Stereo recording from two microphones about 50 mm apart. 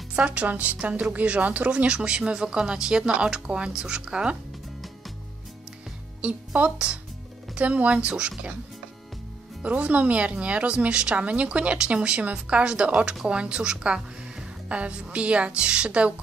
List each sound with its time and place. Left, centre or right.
0.1 s a woman's voice: right
6.2 s a woman's voice: right
9.6 s a woman's voice: right